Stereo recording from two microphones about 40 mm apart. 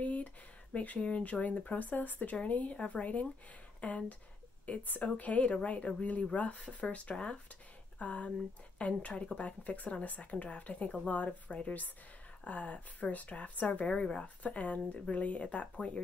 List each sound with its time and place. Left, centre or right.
0.0 s a sound: left
0.7 s speech: left
13.8 s speech: left